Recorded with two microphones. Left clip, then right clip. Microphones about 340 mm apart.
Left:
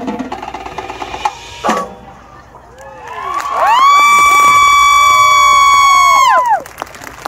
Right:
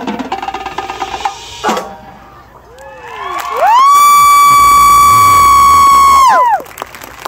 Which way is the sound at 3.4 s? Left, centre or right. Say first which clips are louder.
Right 2 dB; right.